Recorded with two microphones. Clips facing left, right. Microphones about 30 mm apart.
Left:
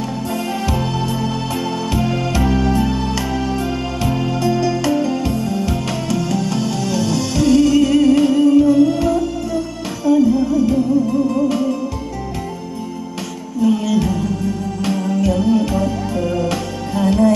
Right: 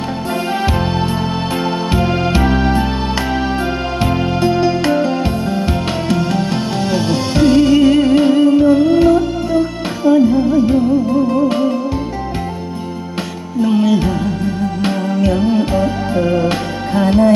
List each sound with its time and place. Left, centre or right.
0.7 s music: right
13.6 s music: right